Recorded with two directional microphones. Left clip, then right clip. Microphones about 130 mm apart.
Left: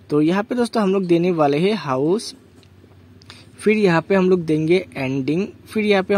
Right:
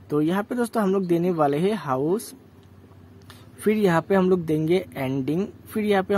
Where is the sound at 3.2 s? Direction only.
25° left (ahead or behind).